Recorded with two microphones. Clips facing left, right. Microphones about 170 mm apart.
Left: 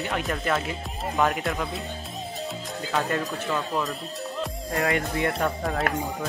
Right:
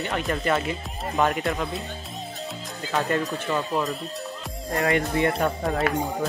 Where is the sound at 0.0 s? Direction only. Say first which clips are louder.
Right 2 dB; centre (ahead or behind).